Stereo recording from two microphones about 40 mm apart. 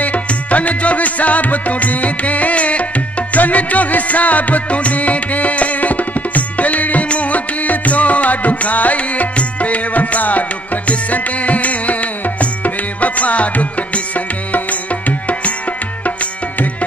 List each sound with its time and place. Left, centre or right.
0.0 s music: left